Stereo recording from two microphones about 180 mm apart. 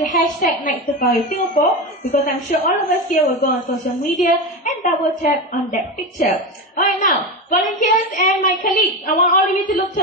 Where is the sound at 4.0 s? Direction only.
45° left (ahead or behind).